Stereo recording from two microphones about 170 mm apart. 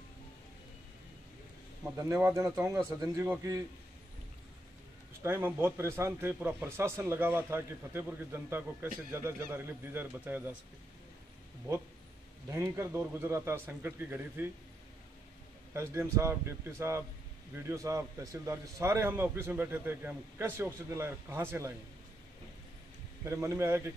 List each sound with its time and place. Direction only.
2.0 s speech: 15° right (ahead or behind)
5.2 s speech: 15° right (ahead or behind)
12.4 s speech: 15° right (ahead or behind)
15.7 s speech: 15° right (ahead or behind)
23.2 s speech: 15° right (ahead or behind)